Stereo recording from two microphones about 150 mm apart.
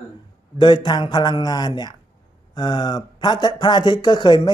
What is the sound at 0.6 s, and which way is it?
A man's voice, 30° left (ahead or behind).